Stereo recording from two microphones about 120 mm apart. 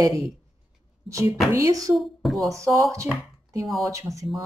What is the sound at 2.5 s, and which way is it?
Speech, 25° right (ahead or behind).